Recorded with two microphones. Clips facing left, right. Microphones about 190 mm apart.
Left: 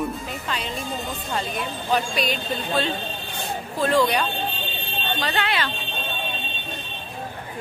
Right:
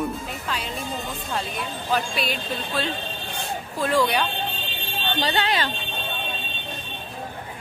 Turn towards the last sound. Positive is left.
turn(degrees=-35)  # may be behind; listen again after turning